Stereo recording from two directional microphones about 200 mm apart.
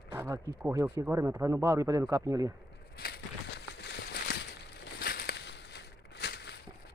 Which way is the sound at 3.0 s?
55° left (ahead or behind).